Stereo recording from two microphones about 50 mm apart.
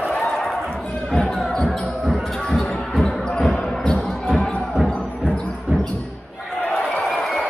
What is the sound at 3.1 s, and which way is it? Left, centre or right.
Basketball bounce, centre.